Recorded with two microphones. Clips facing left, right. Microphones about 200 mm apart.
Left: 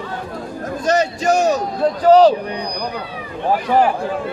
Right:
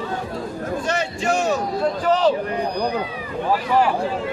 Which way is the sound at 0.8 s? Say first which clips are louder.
Left 9 dB; 40° left (ahead or behind).